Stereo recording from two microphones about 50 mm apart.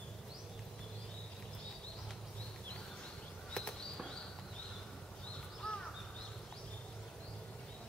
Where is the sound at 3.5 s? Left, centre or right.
Centre.